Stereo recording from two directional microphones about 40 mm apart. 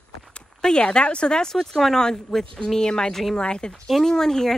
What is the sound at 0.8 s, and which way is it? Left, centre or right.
Speech, left.